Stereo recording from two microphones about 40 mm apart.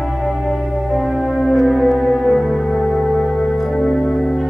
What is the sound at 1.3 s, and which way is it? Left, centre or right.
Music, left.